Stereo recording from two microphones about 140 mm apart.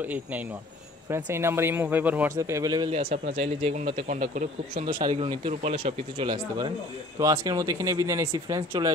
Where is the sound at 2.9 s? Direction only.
45° right (ahead or behind).